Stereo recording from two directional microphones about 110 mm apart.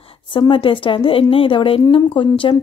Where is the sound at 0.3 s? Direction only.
50° left (ahead or behind).